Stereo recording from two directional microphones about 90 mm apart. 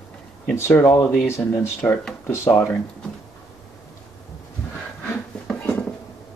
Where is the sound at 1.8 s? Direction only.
15° left (ahead or behind).